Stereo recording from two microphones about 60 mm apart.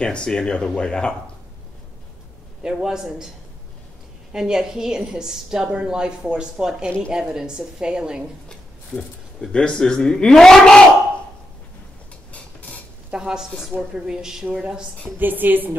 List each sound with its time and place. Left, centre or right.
0.0 s speech: centre
2.6 s a woman's voice: centre
4.3 s a woman's voice: centre
8.5 s speech: centre
13.1 s a woman's voice: centre
15.1 s a woman's voice: right